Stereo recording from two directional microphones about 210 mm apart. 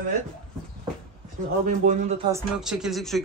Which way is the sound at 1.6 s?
35° right (ahead or behind).